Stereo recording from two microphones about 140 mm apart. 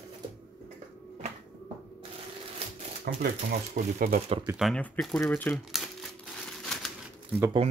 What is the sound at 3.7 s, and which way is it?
Speech, 90° right.